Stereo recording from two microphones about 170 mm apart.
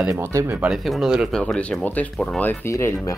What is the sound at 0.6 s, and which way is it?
Speech, centre (ahead or behind).